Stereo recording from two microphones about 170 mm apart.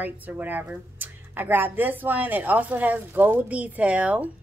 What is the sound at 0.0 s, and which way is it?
A woman's voice, 10° right (ahead or behind).